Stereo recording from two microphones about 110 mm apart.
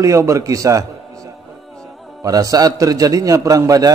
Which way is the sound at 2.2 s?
35° right (ahead or behind).